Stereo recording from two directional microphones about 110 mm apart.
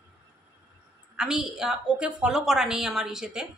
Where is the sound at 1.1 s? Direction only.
5° right (ahead or behind).